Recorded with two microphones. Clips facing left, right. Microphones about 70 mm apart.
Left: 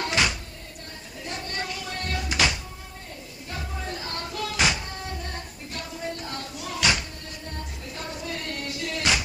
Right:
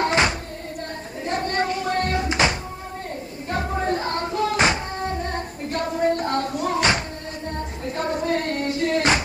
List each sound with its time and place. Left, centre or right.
0.0 s a sound: right
2.1 s music: right
3.4 s music: right